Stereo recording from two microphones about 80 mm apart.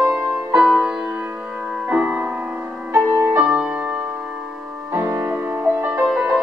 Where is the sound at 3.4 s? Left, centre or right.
Centre.